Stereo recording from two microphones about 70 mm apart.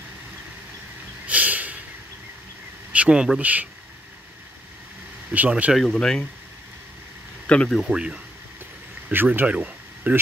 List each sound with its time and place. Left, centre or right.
1.2 s snort: right
2.9 s speech: centre
5.3 s speech: right
5.9 s speech: centre
7.4 s speech: centre
7.9 s speech: centre
9.1 s speech: right
9.5 s a sound: centre